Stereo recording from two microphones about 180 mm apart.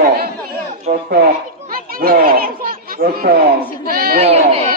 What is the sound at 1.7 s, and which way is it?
Chatter, 50° right (ahead or behind).